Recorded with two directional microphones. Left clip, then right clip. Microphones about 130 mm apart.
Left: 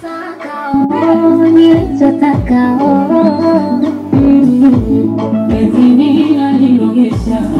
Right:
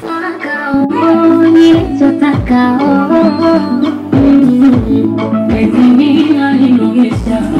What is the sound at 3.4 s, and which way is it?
Music, 5° left (ahead or behind).